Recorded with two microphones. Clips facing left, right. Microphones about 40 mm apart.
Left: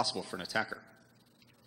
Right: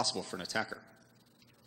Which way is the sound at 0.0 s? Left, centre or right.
Centre.